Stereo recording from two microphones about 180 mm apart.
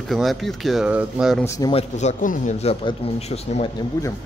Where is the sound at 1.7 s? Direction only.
35° left (ahead or behind).